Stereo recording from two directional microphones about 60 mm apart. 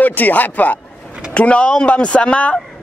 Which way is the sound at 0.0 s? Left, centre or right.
Left.